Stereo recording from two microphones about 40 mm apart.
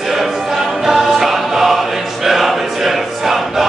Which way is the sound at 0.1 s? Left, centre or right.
Centre.